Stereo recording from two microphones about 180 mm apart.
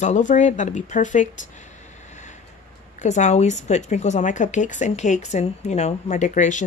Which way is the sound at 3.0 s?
40° left (ahead or behind).